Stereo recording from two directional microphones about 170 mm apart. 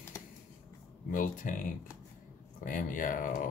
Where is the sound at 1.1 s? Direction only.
50° left (ahead or behind).